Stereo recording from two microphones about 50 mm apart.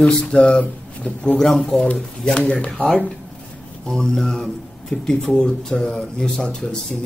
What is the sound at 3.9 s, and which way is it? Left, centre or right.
Speech, centre.